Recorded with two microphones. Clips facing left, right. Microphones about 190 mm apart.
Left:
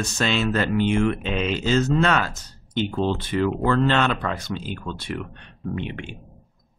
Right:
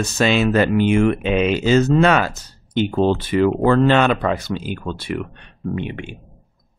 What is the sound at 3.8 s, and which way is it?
Speech, 10° right (ahead or behind).